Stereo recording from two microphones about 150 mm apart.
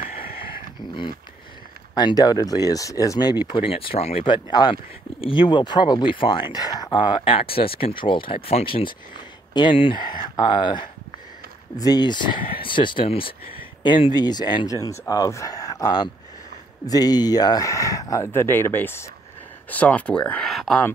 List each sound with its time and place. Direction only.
2.0 s speech: 25° left (ahead or behind); by 20.8 s centre (ahead or behind)